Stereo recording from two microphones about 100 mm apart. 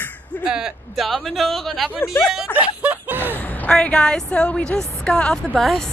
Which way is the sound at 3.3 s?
15° left (ahead or behind).